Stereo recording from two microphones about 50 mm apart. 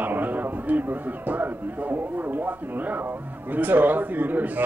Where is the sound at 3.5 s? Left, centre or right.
Right.